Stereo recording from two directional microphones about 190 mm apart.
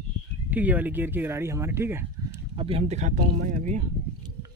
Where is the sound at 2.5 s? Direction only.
30° right (ahead or behind).